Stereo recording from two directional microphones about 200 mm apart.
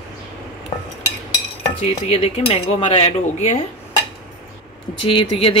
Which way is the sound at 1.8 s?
30° left (ahead or behind).